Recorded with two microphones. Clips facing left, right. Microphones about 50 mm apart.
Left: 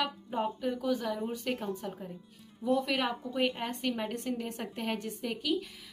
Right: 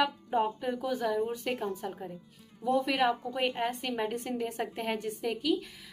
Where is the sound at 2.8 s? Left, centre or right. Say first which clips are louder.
Right 3 dB; centre.